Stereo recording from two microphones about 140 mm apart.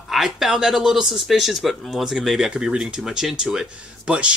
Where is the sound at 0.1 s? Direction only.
Centre (ahead or behind).